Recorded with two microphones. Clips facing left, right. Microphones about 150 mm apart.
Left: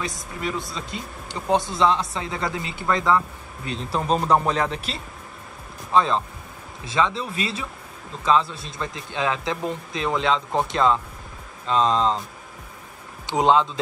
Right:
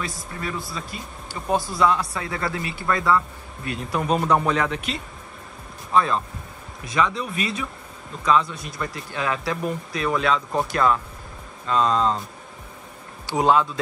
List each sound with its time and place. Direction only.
0.4 s speech: 20° left (ahead or behind)
5.9 s speech: 20° left (ahead or behind)
13.3 s speech: 20° left (ahead or behind)